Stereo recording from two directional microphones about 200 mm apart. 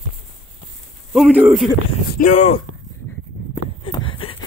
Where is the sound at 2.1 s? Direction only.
40° left (ahead or behind).